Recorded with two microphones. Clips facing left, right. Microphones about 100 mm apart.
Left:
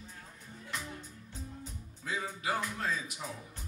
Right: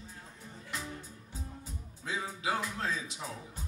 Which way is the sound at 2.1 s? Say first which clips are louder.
Right 1 dB; 20° right (ahead or behind).